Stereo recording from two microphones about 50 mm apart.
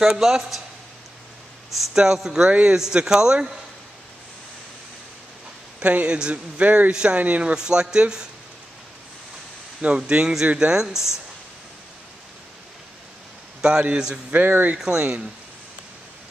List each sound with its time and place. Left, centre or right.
0.2 s a man's voice: centre
1.7 s a man's voice: centre
5.8 s a man's voice: right
6.6 s speech: right
7.2 s speech: right
7.5 s a man's voice: centre
9.8 s speech: right
10.8 s a man's voice: centre
13.6 s a man's voice: centre
14.3 s speech: right
14.8 s a man's voice: centre